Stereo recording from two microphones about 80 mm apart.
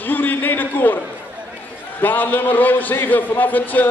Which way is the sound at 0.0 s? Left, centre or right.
Left.